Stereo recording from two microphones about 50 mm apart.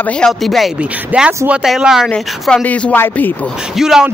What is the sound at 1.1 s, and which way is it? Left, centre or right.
Speech, right.